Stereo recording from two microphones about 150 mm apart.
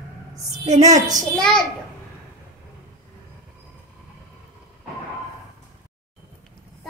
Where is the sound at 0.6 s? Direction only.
50° right (ahead or behind).